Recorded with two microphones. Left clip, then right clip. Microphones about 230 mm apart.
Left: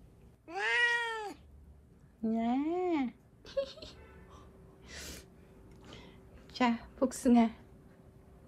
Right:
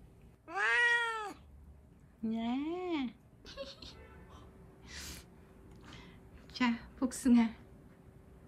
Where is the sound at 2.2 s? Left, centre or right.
Centre.